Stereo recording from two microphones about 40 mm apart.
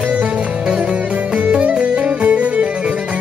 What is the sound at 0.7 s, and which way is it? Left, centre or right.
Music, right.